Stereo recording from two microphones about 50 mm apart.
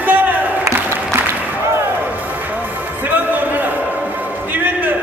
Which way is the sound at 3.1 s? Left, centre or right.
Right.